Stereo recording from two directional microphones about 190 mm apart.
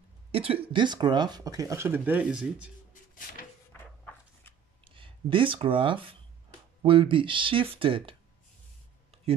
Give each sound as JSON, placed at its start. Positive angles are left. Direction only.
{"t": 0.3, "sound": "a woman's voice", "side_deg": -30}
{"t": 3.7, "sound": "a sound", "side_deg": 10}
{"t": 4.8, "sound": "speech", "side_deg": -25}